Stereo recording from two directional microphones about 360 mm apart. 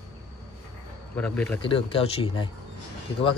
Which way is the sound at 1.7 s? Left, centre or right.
Centre.